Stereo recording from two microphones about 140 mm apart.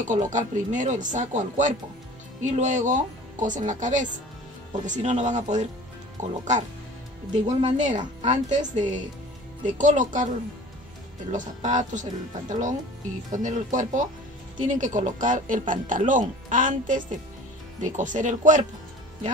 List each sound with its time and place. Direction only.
0.1 s speech: 65° right (ahead or behind)
11.3 s speech: 65° right (ahead or behind)